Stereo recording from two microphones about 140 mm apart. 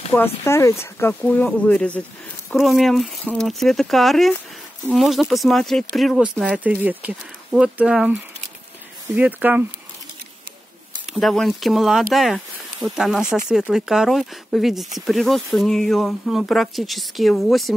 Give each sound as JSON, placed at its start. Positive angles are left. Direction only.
{"t": 0.4, "sound": "speech", "side_deg": 20}
{"t": 11.1, "sound": "speech", "side_deg": 0}